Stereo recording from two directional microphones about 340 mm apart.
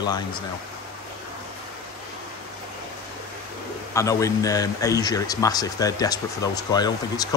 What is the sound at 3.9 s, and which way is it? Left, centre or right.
A man's voice, centre.